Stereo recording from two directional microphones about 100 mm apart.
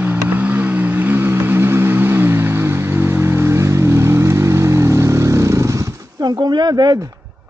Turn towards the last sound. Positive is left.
turn(degrees=-45)  # may be behind; listen again after turning